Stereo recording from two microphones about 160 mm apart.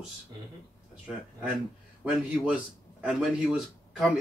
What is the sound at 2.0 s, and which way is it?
A man's voice, 5° right (ahead or behind).